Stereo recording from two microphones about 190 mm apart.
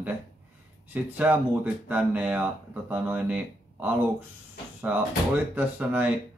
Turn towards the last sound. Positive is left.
turn(degrees=-10)  # may be behind; listen again after turning